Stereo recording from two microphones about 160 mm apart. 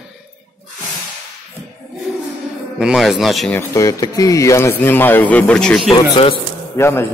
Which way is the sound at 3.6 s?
20° left (ahead or behind).